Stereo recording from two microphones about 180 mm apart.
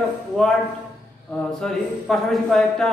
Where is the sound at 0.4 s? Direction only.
Centre (ahead or behind).